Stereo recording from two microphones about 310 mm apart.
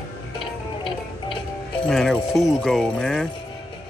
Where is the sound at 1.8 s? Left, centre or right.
Centre.